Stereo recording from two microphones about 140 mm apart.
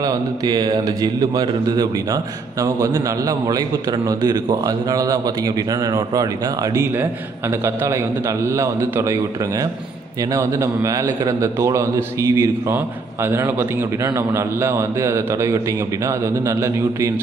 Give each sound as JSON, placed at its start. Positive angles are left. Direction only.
{"t": 0.0, "sound": "a man's voice", "side_deg": -30}